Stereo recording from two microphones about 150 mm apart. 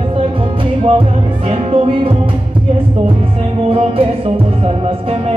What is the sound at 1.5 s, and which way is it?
Music, 40° right (ahead or behind).